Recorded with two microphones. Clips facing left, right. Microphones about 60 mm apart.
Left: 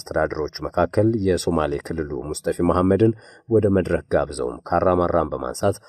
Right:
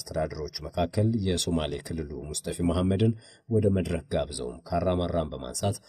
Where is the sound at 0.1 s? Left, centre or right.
Left.